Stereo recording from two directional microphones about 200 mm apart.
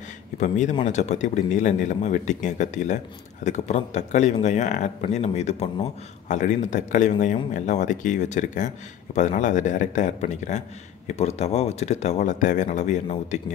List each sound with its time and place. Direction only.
0.4 s speech: 35° left (ahead or behind)